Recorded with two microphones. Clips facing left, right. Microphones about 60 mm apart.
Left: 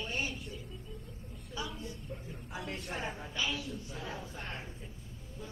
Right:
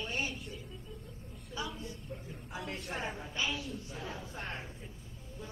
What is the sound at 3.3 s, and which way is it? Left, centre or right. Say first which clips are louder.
Speech: even; right.